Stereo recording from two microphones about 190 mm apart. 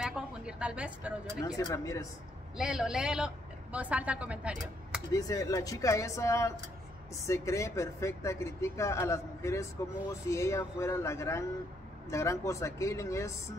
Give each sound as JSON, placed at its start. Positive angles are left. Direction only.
{"t": 0.0, "sound": "speech", "side_deg": -5}
{"t": 1.6, "sound": "a man's voice", "side_deg": 20}
{"t": 2.5, "sound": "a man's voice", "side_deg": -5}
{"t": 5.1, "sound": "a man's voice", "side_deg": 20}